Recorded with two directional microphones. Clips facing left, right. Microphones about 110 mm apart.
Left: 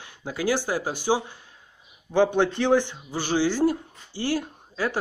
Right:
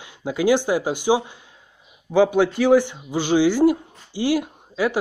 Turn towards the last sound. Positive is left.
turn(degrees=-15)  # may be behind; listen again after turning